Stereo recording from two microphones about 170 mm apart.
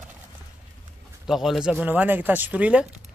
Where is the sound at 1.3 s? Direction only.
Centre (ahead or behind).